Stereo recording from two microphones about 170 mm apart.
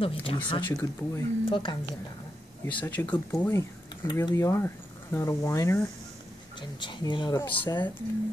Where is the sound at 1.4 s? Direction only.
30° left (ahead or behind).